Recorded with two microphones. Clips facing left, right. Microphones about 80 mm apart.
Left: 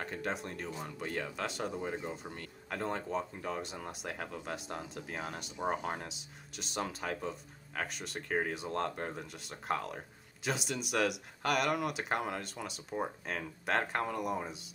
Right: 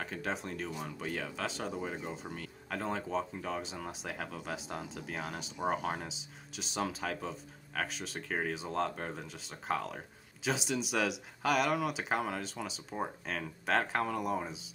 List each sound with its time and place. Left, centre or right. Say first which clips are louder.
0.0 s speech: even; centre